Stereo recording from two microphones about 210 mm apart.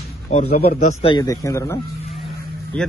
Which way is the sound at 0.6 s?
45° left (ahead or behind).